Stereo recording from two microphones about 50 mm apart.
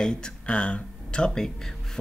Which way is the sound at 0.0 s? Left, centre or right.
Centre.